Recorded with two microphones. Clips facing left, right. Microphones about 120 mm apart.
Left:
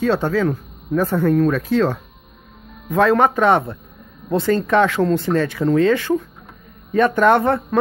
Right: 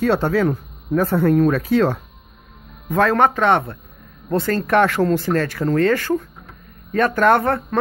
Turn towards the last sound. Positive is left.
turn(degrees=0)  # may be behind; listen again after turning